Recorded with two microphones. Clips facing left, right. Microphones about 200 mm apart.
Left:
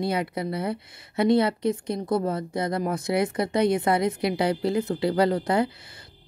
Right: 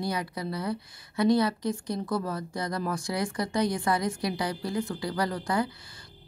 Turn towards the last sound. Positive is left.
turn(degrees=25)  # may be behind; listen again after turning